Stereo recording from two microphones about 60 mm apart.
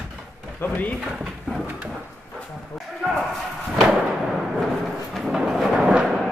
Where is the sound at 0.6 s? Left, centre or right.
Left.